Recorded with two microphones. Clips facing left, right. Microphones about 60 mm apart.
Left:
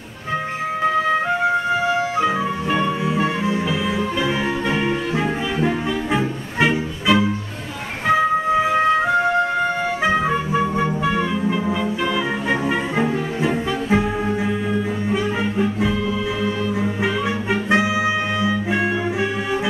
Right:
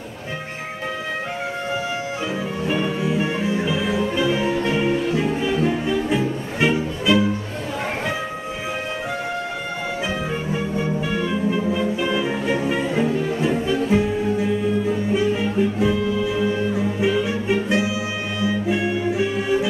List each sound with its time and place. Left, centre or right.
2.1 s music: left
5.2 s music: left
10.0 s music: left
17.1 s music: left